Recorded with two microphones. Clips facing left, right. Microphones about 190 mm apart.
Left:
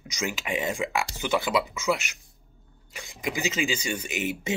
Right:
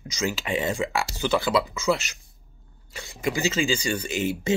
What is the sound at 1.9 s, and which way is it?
Speech, 35° right (ahead or behind).